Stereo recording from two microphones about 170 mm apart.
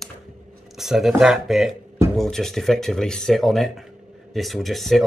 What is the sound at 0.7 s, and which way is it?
Speech, centre (ahead or behind).